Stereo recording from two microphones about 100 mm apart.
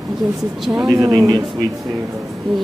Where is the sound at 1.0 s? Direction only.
40° right (ahead or behind).